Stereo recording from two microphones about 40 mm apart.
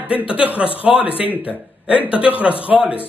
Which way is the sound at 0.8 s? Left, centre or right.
Right.